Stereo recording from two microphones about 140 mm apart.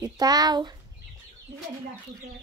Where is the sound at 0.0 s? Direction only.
25° right (ahead or behind).